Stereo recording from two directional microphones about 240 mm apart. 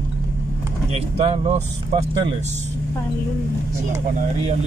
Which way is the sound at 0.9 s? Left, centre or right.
Right.